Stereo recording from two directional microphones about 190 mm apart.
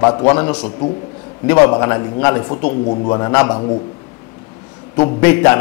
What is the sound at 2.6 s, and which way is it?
A man's voice, 35° left (ahead or behind).